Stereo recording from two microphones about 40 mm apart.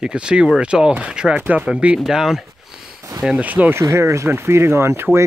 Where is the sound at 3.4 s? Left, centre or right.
Right.